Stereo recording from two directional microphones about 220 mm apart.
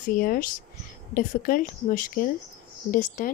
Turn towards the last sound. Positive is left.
turn(degrees=35)  # may be behind; listen again after turning